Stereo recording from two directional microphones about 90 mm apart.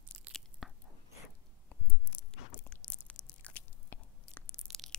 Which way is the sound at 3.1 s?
15° left (ahead or behind).